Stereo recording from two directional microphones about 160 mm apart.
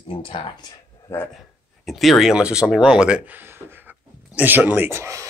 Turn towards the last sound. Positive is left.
turn(degrees=-15)  # may be behind; listen again after turning